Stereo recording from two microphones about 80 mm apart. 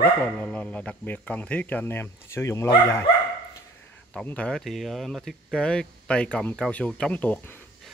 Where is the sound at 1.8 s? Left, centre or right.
Left.